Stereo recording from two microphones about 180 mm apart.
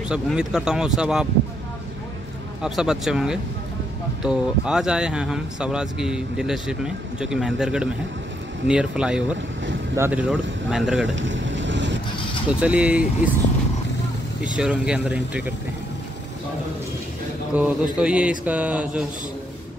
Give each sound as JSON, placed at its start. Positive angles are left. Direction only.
{"t": 0.1, "sound": "speech", "side_deg": -5}
{"t": 2.6, "sound": "speech", "side_deg": -5}
{"t": 11.1, "sound": "boat", "side_deg": -90}
{"t": 12.4, "sound": "speech", "side_deg": -5}
{"t": 14.4, "sound": "speech", "side_deg": -5}
{"t": 17.6, "sound": "speech", "side_deg": -5}